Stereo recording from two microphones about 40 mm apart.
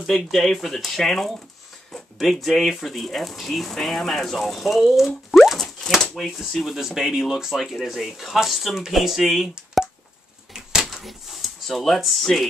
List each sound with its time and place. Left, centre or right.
0.0 s speech: centre
2.4 s speech: centre
10.5 s a sound: centre
11.1 s speech: centre